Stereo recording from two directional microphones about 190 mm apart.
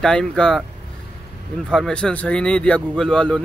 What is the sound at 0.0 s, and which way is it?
Speech, 5° left (ahead or behind).